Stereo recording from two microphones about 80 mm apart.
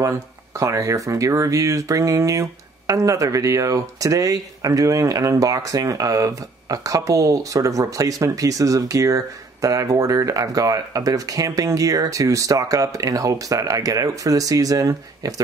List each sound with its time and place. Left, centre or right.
0.0 s speech: right